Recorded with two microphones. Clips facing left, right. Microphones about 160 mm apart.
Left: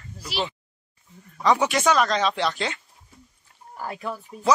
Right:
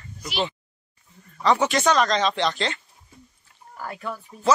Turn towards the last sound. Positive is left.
turn(degrees=10)  # may be behind; listen again after turning